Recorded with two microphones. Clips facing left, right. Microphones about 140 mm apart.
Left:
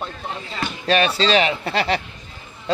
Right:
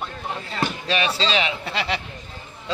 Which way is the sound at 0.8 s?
50° left (ahead or behind).